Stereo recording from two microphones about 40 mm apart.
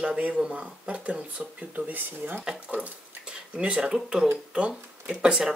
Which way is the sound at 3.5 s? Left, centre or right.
Right.